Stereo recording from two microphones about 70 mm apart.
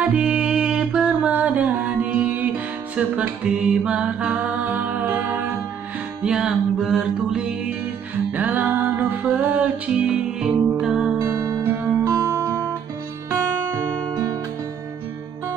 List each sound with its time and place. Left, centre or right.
0.0 s music: centre
6.2 s music: centre
8.3 s music: right; by 11.1 s centre
11.3 s music: right